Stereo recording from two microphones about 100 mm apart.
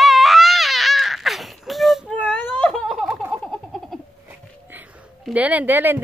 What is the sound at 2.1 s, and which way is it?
Whimper, 15° left (ahead or behind).